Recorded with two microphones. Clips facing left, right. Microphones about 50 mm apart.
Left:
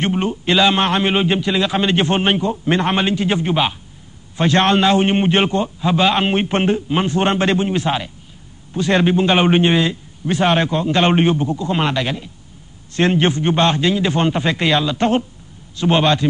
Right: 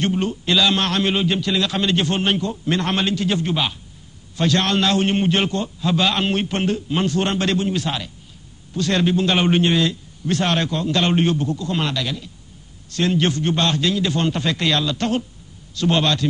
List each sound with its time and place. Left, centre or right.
0.0 s a man's voice: left